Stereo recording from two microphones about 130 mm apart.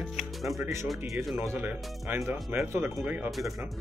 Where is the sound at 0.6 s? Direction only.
20° right (ahead or behind).